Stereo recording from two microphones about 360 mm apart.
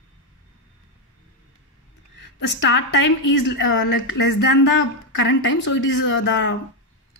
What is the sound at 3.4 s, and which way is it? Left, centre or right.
Speech, left.